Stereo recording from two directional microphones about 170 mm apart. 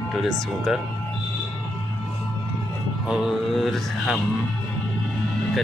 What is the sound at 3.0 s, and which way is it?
Music, 5° right (ahead or behind).